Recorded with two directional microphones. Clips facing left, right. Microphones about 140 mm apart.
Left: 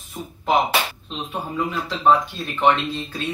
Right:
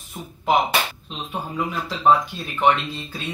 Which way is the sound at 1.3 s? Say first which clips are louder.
Left 1 dB; 5° right (ahead or behind).